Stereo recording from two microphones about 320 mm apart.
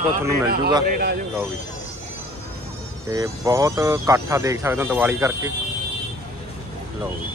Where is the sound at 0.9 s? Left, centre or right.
Right.